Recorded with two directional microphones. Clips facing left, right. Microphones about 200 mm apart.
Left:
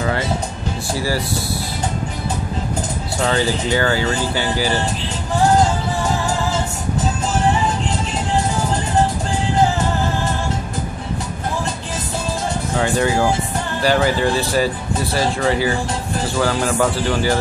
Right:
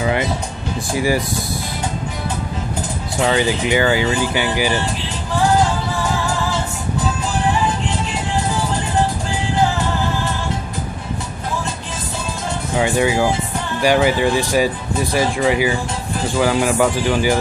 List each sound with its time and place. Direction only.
0.0 s music: 15° right (ahead or behind)
0.9 s speech: 15° right (ahead or behind)
3.3 s speech: 15° right (ahead or behind)
12.7 s speech: 15° right (ahead or behind)